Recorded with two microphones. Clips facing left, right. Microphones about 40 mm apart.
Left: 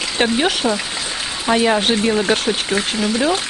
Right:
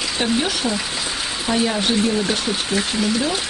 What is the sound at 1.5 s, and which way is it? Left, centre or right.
Speech, left.